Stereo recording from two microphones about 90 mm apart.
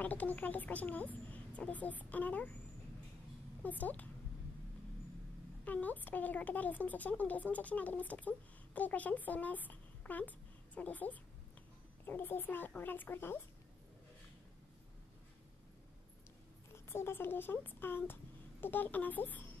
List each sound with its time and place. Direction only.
0.0 s speech: 15° left (ahead or behind)
3.6 s speech: 20° left (ahead or behind)
5.7 s a child's voice: 20° left (ahead or behind)
16.7 s speech: 25° left (ahead or behind)